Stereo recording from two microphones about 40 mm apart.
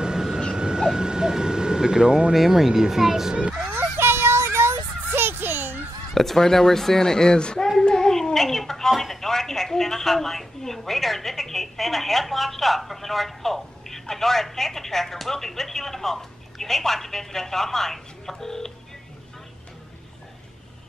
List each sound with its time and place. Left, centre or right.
0.0 s dog: centre
0.6 s vehicle: centre
2.3 s a child's voice: centre
3.7 s child singing: right
6.1 s a woman's voice: centre
7.8 s a sound: centre
8.9 s a woman's voice: centre